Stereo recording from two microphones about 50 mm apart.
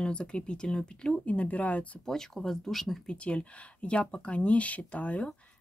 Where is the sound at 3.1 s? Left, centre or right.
Left.